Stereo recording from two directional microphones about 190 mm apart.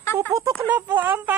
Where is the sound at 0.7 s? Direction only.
10° right (ahead or behind).